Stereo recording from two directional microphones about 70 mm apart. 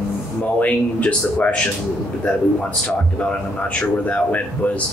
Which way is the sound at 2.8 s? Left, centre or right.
Centre.